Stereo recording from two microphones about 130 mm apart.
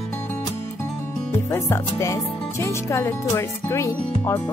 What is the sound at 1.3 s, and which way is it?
Speech, 20° left (ahead or behind).